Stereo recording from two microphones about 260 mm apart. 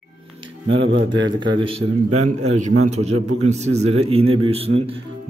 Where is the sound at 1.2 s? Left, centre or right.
Centre.